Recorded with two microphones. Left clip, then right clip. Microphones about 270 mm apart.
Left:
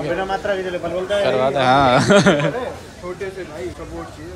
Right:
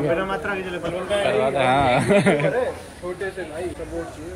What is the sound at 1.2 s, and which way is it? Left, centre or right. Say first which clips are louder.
Speech: left 3 dB; centre.